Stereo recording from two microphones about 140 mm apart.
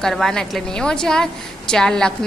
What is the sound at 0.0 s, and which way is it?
A woman's voice, 5° left (ahead or behind).